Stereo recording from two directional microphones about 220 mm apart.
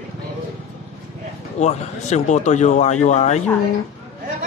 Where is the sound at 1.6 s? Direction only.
30° left (ahead or behind).